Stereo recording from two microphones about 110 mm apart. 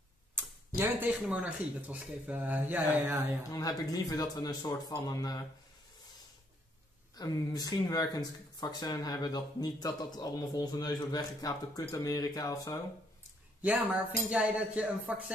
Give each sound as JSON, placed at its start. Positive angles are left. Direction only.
{"t": 0.7, "sound": "speech", "side_deg": -15}
{"t": 3.4, "sound": "speech", "side_deg": 35}
{"t": 7.2, "sound": "speech", "side_deg": 35}
{"t": 13.6, "sound": "speech", "side_deg": -15}